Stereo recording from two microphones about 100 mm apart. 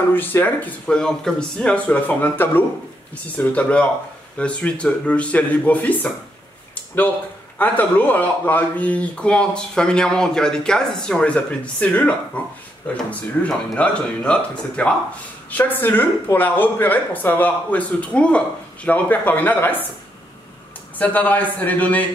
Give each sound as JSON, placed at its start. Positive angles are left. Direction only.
{"t": 0.1, "sound": "speech", "side_deg": 20}
{"t": 7.5, "sound": "speech", "side_deg": 15}
{"t": 21.0, "sound": "speech", "side_deg": 15}